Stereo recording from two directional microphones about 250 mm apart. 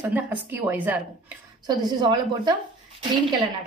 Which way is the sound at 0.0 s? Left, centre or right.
Centre.